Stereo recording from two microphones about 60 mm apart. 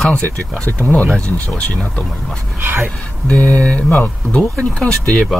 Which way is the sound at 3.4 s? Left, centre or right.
Left.